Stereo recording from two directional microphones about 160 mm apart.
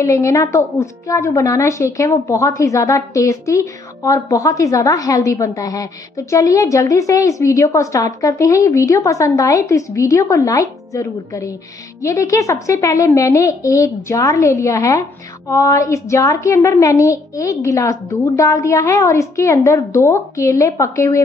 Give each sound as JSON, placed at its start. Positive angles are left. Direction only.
{"t": 0.0, "sound": "a woman's voice", "side_deg": 20}